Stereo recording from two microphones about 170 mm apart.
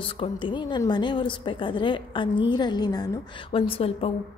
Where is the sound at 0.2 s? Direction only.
30° left (ahead or behind).